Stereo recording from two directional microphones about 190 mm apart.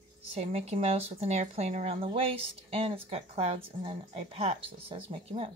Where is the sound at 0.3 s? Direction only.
30° right (ahead or behind).